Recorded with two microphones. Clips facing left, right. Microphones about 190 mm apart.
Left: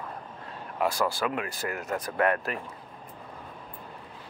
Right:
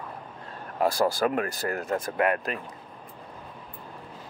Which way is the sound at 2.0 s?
20° right (ahead or behind).